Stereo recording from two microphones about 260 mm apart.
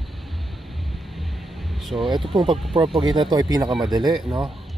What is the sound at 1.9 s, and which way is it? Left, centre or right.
Speech, centre.